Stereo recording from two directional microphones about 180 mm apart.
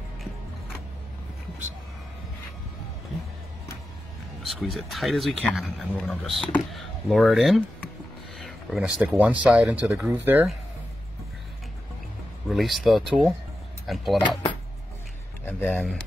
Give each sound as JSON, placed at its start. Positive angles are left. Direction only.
{"t": 4.4, "sound": "speech", "side_deg": 0}
{"t": 12.4, "sound": "speech", "side_deg": 0}
{"t": 15.4, "sound": "speech", "side_deg": 10}